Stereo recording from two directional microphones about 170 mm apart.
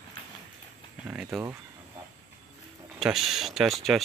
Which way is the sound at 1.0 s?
5° right (ahead or behind).